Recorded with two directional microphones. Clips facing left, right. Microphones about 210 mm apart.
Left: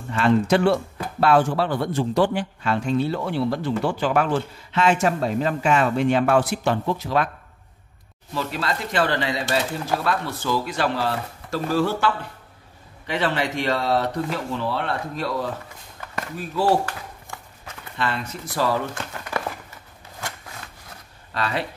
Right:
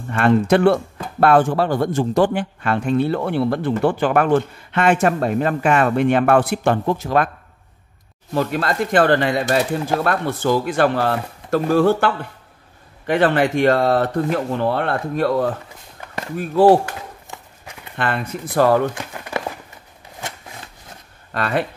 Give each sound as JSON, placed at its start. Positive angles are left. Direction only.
{"t": 0.1, "sound": "speech", "side_deg": -55}
{"t": 8.3, "sound": "speech", "side_deg": -50}
{"t": 16.8, "sound": "a sound", "side_deg": -20}
{"t": 17.9, "sound": "speech", "side_deg": -55}
{"t": 18.9, "sound": "crumpling", "side_deg": -15}
{"t": 20.2, "sound": "shuffling cards", "side_deg": -20}
{"t": 21.3, "sound": "speech", "side_deg": -50}